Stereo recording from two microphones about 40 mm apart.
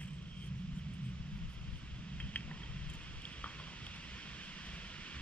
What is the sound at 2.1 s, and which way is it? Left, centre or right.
Vehicle, left.